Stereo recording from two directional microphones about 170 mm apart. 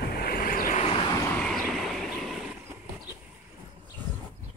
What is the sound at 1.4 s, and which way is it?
Waves, 5° left (ahead or behind).